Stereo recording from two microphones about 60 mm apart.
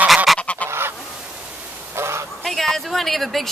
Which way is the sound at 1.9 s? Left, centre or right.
Right.